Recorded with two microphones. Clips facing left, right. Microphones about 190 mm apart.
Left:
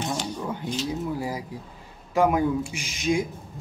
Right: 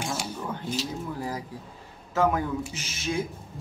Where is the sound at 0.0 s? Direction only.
5° right (ahead or behind).